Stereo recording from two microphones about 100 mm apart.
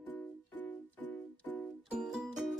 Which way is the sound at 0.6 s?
20° left (ahead or behind).